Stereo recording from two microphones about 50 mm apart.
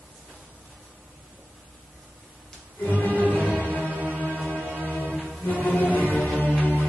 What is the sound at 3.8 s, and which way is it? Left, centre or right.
Music, right.